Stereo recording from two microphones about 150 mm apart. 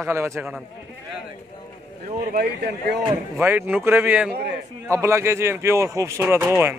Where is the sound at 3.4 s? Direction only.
15° right (ahead or behind).